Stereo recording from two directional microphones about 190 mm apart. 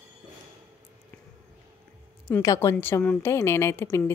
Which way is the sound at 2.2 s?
15° left (ahead or behind).